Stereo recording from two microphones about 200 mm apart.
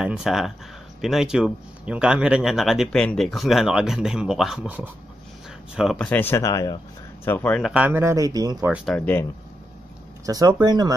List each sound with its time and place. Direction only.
0.0 s speech: 5° right (ahead or behind); by 8.7 s 20° right (ahead or behind)
8.7 s speech: 5° left (ahead or behind)
10.2 s speech: 20° right (ahead or behind)